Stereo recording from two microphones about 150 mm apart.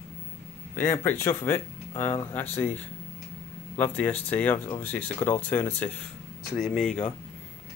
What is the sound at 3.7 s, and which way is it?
Speech, 10° left (ahead or behind).